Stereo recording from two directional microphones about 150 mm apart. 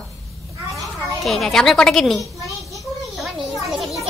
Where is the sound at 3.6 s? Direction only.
Centre (ahead or behind).